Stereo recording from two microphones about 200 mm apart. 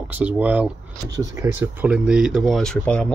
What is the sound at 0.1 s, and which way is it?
Speech, 10° right (ahead or behind).